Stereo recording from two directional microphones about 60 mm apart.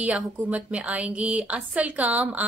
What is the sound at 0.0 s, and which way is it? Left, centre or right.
Speech, right.